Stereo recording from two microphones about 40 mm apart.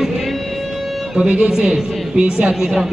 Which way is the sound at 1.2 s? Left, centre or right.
Right.